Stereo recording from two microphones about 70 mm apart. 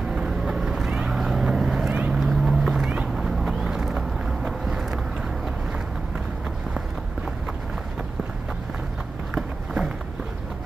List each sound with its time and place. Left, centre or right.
0.1 s vehicle: centre
1.9 s vehicle: right
2.1 s boat: centre
3.3 s vehicle: centre